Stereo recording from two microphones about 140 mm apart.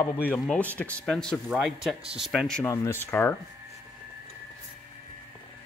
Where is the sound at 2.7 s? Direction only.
15° left (ahead or behind).